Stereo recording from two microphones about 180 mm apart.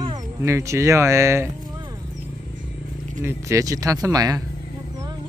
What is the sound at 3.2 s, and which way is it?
Speech, 15° right (ahead or behind).